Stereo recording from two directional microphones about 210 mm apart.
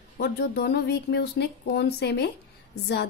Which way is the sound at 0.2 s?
50° left (ahead or behind).